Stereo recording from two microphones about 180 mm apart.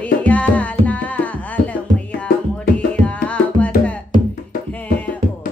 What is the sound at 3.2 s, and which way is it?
Music, 5° left (ahead or behind).